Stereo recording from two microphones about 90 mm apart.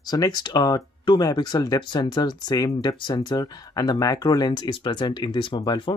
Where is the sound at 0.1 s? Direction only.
50° left (ahead or behind).